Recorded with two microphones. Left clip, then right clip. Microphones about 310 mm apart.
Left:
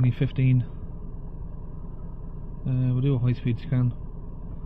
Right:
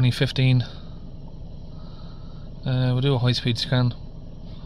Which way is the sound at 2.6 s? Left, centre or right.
Right.